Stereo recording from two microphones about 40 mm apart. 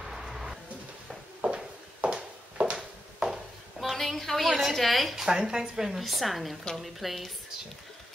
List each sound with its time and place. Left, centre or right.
0.0 s vehicle: centre
1.4 s walk: right
2.6 s a sound: right
3.8 s a sound: centre
4.7 s a woman's voice: centre
5.2 s a woman's voice: centre
5.9 s a woman's voice: centre